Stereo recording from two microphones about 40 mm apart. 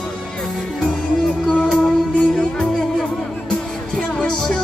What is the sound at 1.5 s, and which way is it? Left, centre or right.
Music, left.